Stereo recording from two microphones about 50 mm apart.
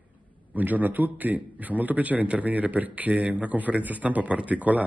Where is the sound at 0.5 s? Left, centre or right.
Right.